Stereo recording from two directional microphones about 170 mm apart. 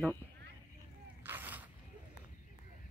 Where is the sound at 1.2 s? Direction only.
10° right (ahead or behind).